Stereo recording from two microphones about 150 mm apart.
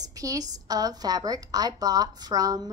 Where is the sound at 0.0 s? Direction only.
25° right (ahead or behind).